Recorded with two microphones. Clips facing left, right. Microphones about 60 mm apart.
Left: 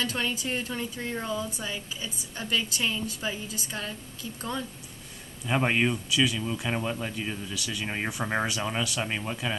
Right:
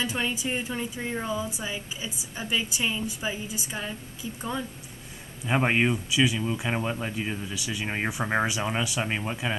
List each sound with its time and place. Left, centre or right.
0.0 s speech: centre